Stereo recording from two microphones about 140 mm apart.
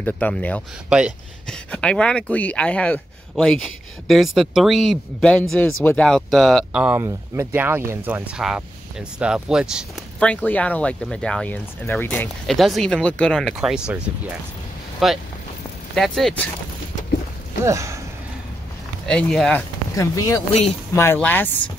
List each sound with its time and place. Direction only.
0.0 s speech: 10° left (ahead or behind)
0.8 s speech: 5° right (ahead or behind)
1.5 s speech: 5° left (ahead or behind)
6.8 s speech: 15° right (ahead or behind)
8.4 s speech: 5° right (ahead or behind)
10.1 s speech: 10° left (ahead or behind)
12.4 s speech: centre (ahead or behind)
17.6 s speech: 20° right (ahead or behind)
19.0 s speech: 5° left (ahead or behind)
20.0 s speech: 25° left (ahead or behind)